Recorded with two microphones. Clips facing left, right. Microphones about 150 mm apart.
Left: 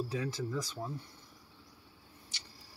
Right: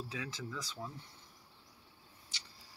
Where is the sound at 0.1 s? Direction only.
45° left (ahead or behind).